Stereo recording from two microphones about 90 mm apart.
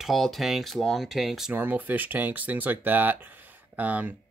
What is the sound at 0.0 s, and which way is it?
Speech, centre (ahead or behind).